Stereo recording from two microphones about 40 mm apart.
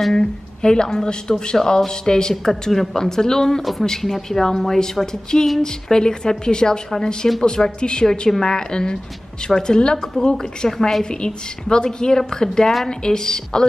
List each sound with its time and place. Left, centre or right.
0.1 s a woman's voice: centre
10.7 s speech: centre
11.1 s a woman's voice: centre